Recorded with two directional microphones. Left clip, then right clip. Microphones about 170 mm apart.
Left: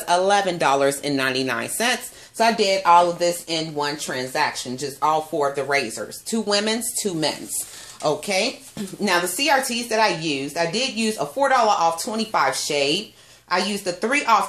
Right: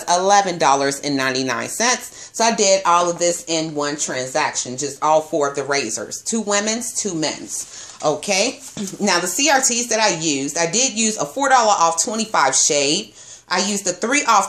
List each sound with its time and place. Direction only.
0.0 s speech: 10° right (ahead or behind)
8.0 s a woman's voice: 20° right (ahead or behind)